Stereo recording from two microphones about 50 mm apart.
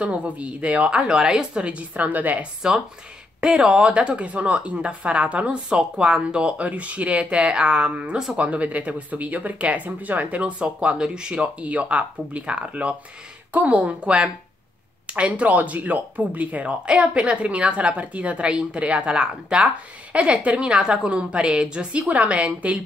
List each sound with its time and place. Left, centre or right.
0.0 s speech: right
2.6 s speech: centre
10.6 s speech: right